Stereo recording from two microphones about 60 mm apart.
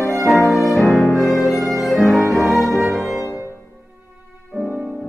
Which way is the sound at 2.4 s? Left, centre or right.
Right.